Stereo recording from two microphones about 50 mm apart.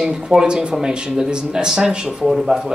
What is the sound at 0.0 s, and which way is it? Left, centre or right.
A man's voice, centre.